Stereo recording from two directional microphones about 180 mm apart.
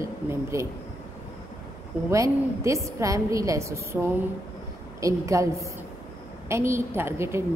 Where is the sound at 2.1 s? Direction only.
15° right (ahead or behind).